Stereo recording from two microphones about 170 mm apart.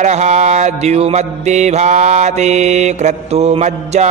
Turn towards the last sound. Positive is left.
turn(degrees=-40)  # may be behind; listen again after turning